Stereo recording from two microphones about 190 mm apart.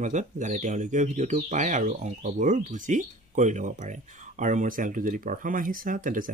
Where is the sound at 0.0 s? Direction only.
40° right (ahead or behind).